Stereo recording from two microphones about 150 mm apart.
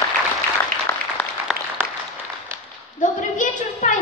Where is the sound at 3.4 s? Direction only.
60° left (ahead or behind).